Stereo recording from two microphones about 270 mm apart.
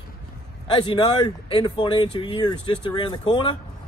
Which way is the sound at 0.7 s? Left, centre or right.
Centre.